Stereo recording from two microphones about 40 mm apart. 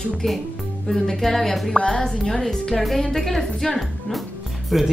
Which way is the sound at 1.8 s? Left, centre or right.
Centre.